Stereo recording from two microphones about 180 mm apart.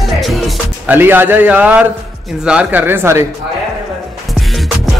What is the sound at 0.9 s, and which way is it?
A man's voice, 10° right (ahead or behind).